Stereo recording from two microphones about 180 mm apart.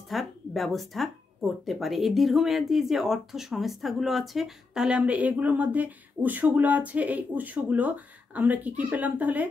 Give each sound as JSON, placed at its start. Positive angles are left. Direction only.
{"t": 0.1, "sound": "speech", "side_deg": 0}